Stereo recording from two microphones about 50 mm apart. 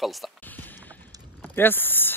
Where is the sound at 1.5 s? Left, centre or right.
Left.